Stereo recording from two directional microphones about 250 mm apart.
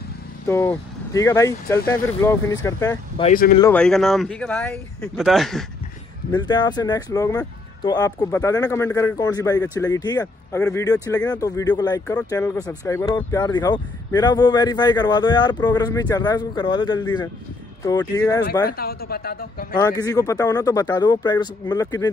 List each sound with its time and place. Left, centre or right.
0.5 s speech: centre
3.2 s speech: left
3.7 s speech: centre
6.3 s speech: centre
18.7 s a woman's voice: left
19.7 s speech: centre